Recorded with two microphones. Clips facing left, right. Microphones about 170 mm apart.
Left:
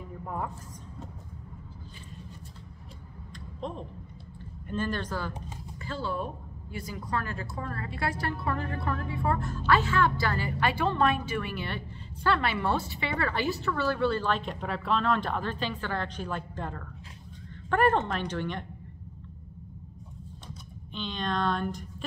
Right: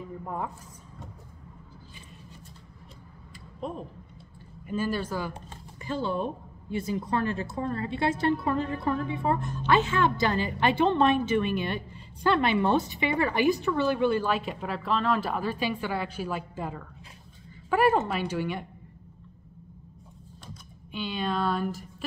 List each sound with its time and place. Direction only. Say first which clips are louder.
0.2 s a woman's voice: even; 5° right (ahead or behind)
3.6 s a woman's voice: right 2 dB; 5° right (ahead or behind)
20.9 s speech: right 2 dB; 5° right (ahead or behind)